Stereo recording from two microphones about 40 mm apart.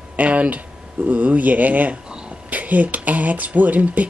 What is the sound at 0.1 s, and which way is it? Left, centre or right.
Speech, right.